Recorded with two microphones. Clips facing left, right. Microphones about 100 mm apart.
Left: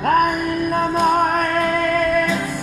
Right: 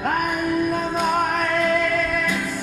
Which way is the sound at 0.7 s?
60° left (ahead or behind).